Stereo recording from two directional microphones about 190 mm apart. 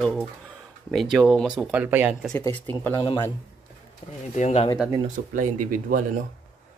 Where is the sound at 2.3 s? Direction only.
10° left (ahead or behind).